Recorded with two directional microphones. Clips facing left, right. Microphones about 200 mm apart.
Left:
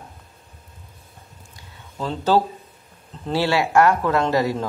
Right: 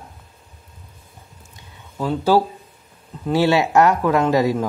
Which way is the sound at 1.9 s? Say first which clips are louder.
Right 3 dB; 10° right (ahead or behind).